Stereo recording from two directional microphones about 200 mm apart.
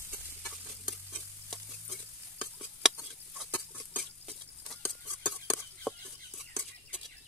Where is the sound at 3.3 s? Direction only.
5° left (ahead or behind).